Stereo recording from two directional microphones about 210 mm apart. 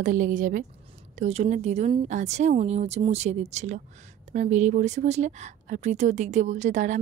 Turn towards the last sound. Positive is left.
turn(degrees=-35)  # may be behind; listen again after turning